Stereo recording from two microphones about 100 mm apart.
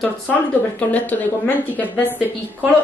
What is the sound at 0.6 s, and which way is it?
A woman's voice, 15° left (ahead or behind).